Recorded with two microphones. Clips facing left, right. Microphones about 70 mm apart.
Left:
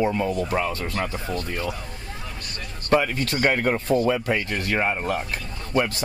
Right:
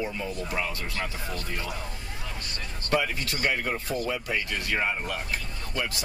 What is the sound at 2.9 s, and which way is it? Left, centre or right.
Speech, left.